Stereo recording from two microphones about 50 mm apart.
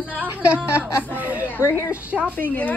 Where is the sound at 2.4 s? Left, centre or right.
Left.